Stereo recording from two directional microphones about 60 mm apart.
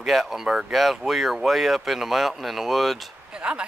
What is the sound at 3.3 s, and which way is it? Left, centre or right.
Speech, centre.